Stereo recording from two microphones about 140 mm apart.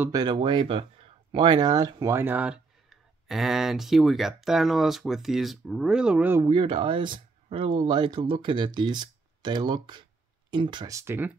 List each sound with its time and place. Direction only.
0.1 s speech: 30° right (ahead or behind); by 6.4 s 10° right (ahead or behind)
6.4 s speech: 35° right (ahead or behind); by 11.3 s 15° right (ahead or behind)